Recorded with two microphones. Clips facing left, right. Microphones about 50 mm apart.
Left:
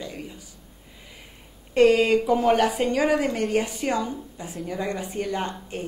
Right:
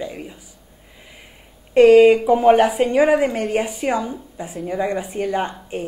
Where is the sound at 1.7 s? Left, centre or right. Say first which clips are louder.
Right 8 dB; centre.